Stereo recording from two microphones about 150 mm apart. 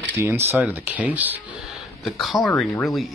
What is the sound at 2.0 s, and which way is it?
Speech, centre (ahead or behind).